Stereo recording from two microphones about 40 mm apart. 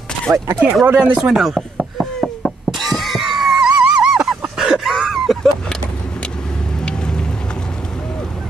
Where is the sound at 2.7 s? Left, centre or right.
Centre.